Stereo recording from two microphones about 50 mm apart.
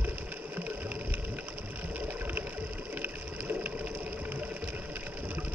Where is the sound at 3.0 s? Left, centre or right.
Right.